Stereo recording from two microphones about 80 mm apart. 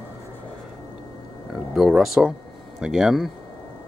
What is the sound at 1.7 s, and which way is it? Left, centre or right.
Speech, centre.